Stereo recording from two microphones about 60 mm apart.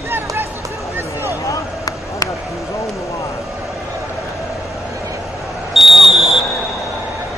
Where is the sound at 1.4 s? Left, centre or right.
Left.